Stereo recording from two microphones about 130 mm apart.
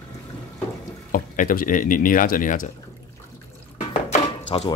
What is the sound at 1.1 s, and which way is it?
Speech, 90° left.